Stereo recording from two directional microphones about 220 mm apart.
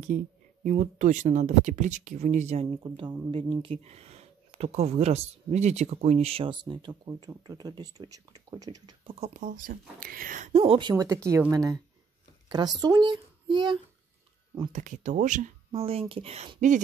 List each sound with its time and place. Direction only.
0.7 s a child's voice: 35° right (ahead or behind); by 13.7 s 20° right (ahead or behind)
14.7 s speech: 35° right (ahead or behind)